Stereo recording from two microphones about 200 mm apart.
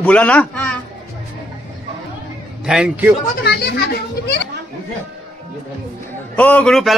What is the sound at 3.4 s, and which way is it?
Speech, 55° left (ahead or behind).